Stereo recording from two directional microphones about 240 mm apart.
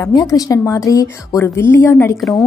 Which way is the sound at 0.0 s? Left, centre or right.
Centre.